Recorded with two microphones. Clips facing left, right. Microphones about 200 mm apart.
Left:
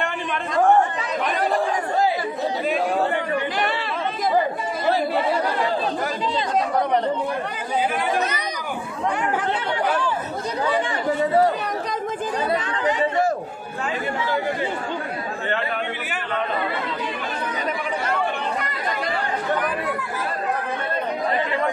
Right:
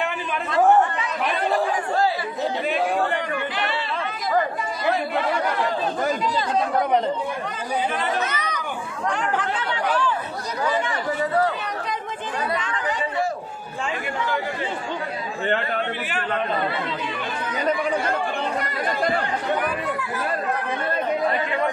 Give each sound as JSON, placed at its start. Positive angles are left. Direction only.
{"t": 8.2, "sound": "chatter", "side_deg": 35}
{"t": 9.1, "sound": "speech", "side_deg": 10}
{"t": 10.7, "sound": "speech", "side_deg": 25}